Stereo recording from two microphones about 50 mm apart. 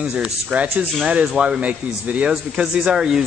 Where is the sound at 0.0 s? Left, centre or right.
Right.